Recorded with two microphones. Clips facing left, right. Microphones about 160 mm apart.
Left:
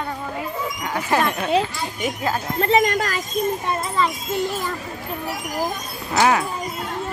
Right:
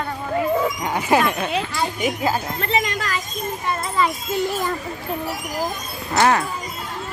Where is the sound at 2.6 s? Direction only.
45° left (ahead or behind).